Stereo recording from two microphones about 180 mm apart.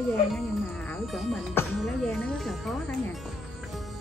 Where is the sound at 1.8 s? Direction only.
5° left (ahead or behind).